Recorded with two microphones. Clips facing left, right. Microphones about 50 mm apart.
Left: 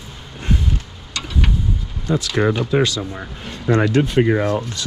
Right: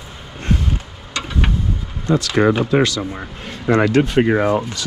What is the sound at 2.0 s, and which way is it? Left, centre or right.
Speech, right.